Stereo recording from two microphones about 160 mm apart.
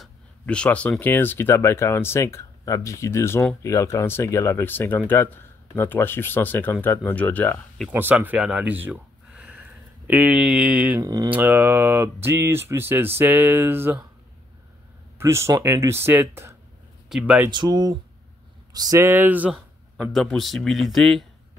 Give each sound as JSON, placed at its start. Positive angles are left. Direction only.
{"t": 0.0, "sound": "speech", "side_deg": 5}
{"t": 7.9, "sound": "speech", "side_deg": -15}
{"t": 11.0, "sound": "speech", "side_deg": -20}
{"t": 15.1, "sound": "speech", "side_deg": -15}
{"t": 17.5, "sound": "speech", "side_deg": -25}
{"t": 20.0, "sound": "speech", "side_deg": 5}